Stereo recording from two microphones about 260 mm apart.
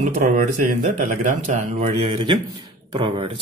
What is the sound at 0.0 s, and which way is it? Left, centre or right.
A man's voice, right.